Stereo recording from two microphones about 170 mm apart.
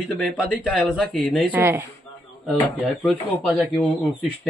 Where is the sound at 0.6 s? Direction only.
5° left (ahead or behind).